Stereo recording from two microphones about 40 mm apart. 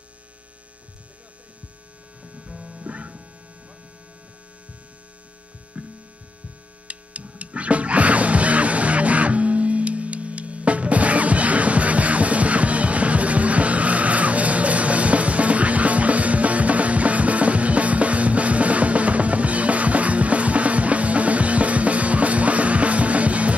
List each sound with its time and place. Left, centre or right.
2.4 s mains hum: right
5.7 s hum: right
6.9 s music: right